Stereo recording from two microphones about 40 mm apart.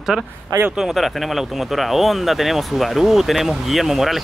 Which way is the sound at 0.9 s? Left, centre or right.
Centre.